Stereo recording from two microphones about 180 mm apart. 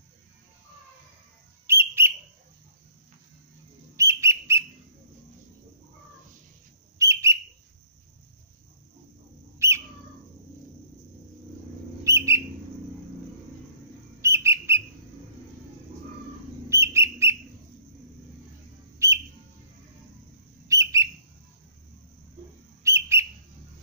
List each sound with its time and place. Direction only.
1.7 s bird: 15° right (ahead or behind)
3.9 s bird: 15° right (ahead or behind)
7.0 s bird: 15° right (ahead or behind)
9.6 s bird: 15° right (ahead or behind)
12.0 s bird: 15° right (ahead or behind)
14.2 s bird: 15° right (ahead or behind)
16.6 s bird: 15° right (ahead or behind)
19.0 s bird: 15° right (ahead or behind)
20.6 s bird: 15° right (ahead or behind)
22.8 s bird: 15° right (ahead or behind)